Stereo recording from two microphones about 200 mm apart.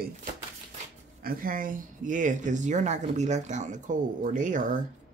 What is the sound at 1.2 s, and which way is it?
Speech, 45° right (ahead or behind).